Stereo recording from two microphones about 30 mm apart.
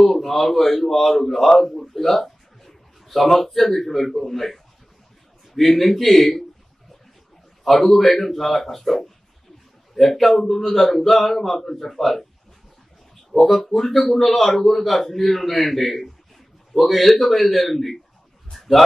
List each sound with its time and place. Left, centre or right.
0.0 s a man's voice: centre
7.6 s a man's voice: centre
13.3 s a man's voice: centre
18.5 s a sound: centre